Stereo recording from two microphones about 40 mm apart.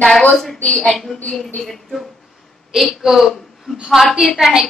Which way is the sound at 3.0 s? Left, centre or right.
Centre.